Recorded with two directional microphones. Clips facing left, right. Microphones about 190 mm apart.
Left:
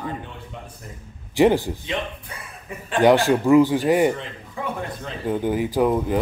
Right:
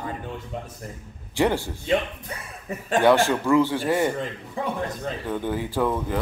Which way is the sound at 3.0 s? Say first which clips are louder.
Left 3 dB; 15° left (ahead or behind).